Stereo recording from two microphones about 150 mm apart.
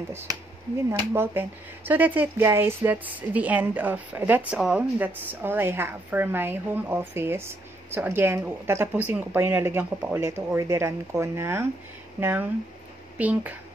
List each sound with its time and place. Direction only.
0.1 s a woman's voice: 15° right (ahead or behind)